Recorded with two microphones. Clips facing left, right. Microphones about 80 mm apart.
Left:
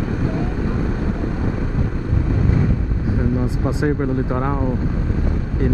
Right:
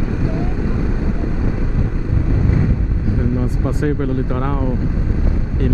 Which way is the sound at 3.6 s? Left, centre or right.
Centre.